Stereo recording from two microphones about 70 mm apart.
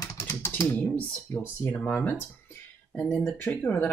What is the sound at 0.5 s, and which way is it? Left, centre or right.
Speech, left.